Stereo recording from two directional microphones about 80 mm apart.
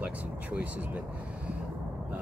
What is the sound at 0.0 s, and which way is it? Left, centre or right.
Vehicle, centre.